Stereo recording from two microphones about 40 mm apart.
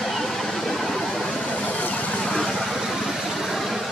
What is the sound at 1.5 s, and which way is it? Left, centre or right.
Vehicle, left.